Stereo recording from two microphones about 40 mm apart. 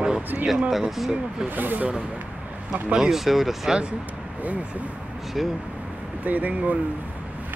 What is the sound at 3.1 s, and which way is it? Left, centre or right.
Speech, centre.